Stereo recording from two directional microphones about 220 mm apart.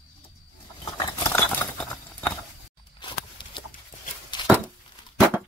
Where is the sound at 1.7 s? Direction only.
5° left (ahead or behind).